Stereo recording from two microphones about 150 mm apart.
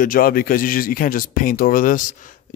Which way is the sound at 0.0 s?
70° left (ahead or behind).